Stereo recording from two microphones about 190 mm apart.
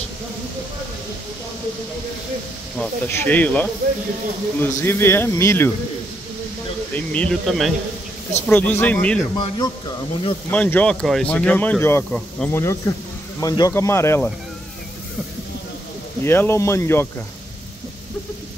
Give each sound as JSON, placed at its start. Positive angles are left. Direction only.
{"t": 2.8, "sound": "speech", "side_deg": 10}
{"t": 6.9, "sound": "speech", "side_deg": 5}
{"t": 9.4, "sound": "a man's voice", "side_deg": 25}
{"t": 10.5, "sound": "speech", "side_deg": 5}
{"t": 16.2, "sound": "speech", "side_deg": 15}